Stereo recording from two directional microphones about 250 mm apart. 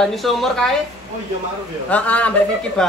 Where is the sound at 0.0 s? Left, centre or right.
Centre.